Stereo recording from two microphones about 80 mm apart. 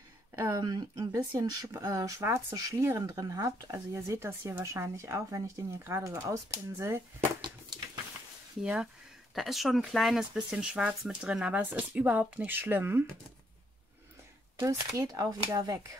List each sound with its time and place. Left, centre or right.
0.5 s speech: right
1.9 s speech: right
3.7 s speech: right
8.5 s speech: centre; by 13.0 s right
14.6 s speech: right